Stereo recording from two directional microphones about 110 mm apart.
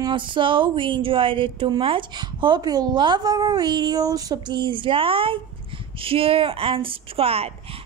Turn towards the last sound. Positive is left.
turn(degrees=-65)  # may be behind; listen again after turning